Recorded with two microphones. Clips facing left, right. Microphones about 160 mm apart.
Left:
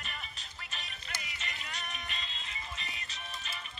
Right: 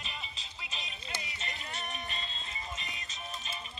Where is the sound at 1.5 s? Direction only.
40° right (ahead or behind).